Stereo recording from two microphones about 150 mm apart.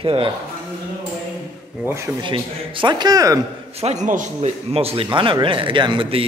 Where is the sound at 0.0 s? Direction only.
35° right (ahead or behind).